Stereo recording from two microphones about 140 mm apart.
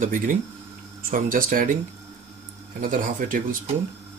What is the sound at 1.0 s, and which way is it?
Speech, 80° right.